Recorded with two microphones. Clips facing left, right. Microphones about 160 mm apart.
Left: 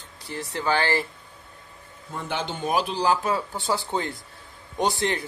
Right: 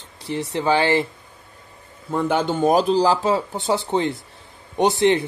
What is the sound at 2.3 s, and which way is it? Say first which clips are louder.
Speech: right 8 dB; 45° right (ahead or behind).